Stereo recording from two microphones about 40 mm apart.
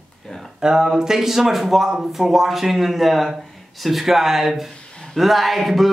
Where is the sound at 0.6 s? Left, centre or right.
Centre.